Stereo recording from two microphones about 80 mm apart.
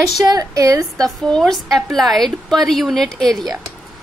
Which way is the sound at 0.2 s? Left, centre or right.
Right.